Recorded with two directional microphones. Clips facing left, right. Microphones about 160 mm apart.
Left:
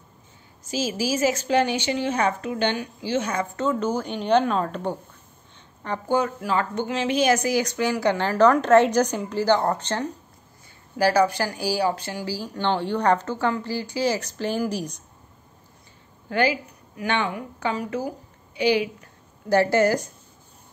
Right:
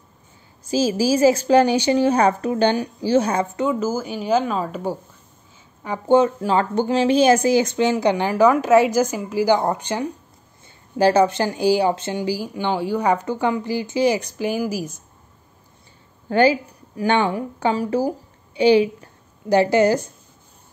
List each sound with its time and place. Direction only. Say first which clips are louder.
0.7 s a woman's voice: right 7 dB; 30° right (ahead or behind)
3.5 s speech: right 2 dB; 10° right (ahead or behind)
6.0 s speech: right 8 dB; 25° right (ahead or behind)
11.0 s speech: right 4 dB; 25° right (ahead or behind); by 15.0 s 5° right (ahead or behind)
16.3 s a woman's voice: right 6 dB; 30° right (ahead or behind)
19.5 s speech: right 3 dB; 15° right (ahead or behind)